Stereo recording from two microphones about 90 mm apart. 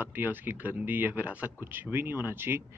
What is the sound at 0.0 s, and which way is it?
Speech, 20° right (ahead or behind).